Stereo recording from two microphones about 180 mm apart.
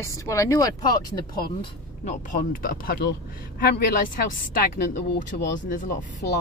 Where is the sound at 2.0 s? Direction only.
50° left (ahead or behind).